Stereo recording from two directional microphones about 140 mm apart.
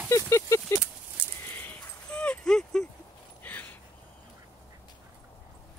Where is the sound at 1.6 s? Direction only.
10° left (ahead or behind).